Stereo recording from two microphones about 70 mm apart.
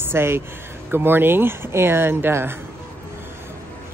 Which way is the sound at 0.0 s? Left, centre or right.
Right.